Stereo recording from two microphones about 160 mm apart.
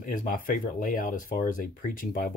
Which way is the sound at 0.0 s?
55° left (ahead or behind).